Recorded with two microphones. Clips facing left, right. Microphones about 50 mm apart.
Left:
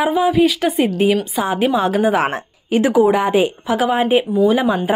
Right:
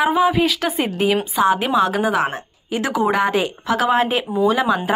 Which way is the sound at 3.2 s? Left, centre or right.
Left.